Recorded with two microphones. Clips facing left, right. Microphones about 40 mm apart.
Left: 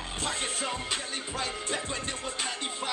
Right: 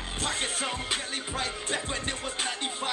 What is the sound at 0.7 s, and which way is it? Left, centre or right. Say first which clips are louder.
Music: right 1 dB; centre.